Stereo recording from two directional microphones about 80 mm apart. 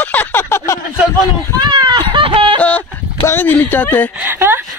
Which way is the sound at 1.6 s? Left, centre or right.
Right.